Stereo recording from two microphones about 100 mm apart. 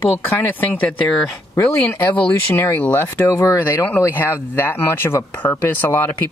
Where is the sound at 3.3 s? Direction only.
30° left (ahead or behind).